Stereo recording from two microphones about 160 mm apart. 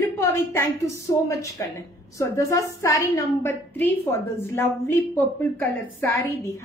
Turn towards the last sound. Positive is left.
turn(degrees=15)  # may be behind; listen again after turning